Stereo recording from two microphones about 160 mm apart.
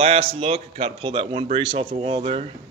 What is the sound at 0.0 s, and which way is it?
A man's voice, 40° right (ahead or behind).